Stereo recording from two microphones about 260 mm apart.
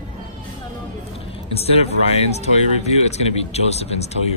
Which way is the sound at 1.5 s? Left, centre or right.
Left.